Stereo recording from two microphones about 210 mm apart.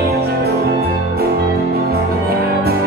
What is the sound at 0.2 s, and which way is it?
Music, 50° right (ahead or behind).